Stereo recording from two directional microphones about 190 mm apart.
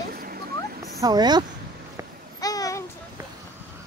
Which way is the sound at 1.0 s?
20° right (ahead or behind).